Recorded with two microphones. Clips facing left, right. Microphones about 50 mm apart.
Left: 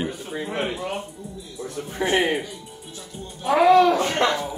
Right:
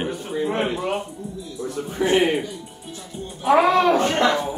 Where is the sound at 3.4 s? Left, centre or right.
Right.